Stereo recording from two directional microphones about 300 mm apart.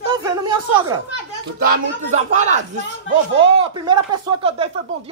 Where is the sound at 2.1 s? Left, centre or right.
Right.